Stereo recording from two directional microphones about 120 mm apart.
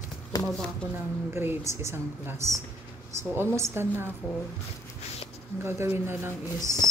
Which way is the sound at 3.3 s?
20° right (ahead or behind).